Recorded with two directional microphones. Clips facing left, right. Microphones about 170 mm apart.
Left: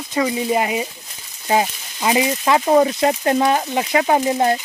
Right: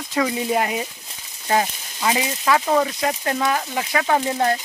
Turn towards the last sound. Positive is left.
turn(degrees=20)  # may be behind; listen again after turning